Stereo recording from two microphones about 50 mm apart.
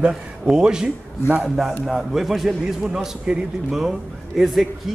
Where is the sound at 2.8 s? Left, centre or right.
Centre.